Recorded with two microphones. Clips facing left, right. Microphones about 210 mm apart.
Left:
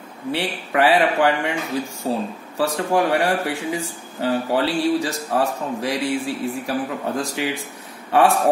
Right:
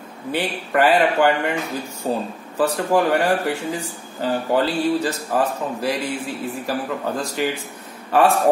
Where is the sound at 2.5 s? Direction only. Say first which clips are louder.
Right 2 dB; centre (ahead or behind).